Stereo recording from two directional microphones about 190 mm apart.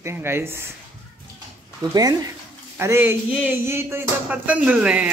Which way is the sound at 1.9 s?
20° right (ahead or behind).